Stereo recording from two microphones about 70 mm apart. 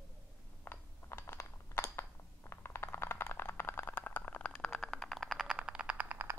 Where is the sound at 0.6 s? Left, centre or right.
Left.